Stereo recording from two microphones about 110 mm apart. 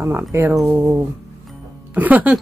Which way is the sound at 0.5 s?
5° right (ahead or behind).